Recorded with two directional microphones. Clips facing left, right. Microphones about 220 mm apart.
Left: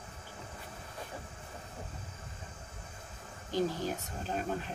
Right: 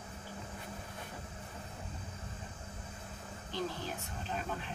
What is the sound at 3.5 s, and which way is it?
Speech, 45° left (ahead or behind).